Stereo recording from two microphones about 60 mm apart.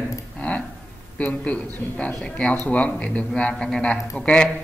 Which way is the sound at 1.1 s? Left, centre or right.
Left.